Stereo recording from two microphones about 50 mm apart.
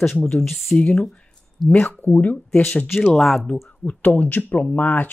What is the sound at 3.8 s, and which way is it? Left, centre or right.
Speech, left.